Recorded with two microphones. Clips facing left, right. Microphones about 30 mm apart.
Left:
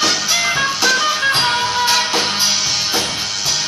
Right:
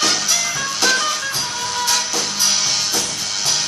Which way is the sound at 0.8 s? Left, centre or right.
Centre.